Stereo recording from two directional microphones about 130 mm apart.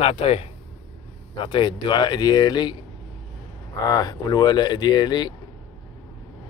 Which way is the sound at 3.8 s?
30° left (ahead or behind).